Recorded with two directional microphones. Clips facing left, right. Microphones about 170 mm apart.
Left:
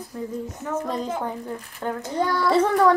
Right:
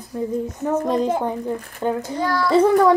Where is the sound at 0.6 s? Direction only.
35° right (ahead or behind).